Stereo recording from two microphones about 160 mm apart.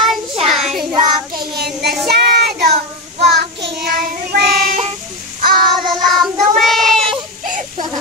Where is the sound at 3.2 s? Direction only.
90° right; by 4.8 s 70° right (ahead or behind).